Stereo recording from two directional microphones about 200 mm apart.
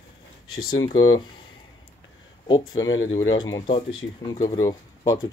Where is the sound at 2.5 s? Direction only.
20° left (ahead or behind).